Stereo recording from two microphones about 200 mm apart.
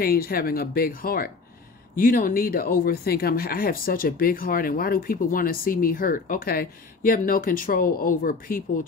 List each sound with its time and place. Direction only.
0.0 s speech: 50° left (ahead or behind)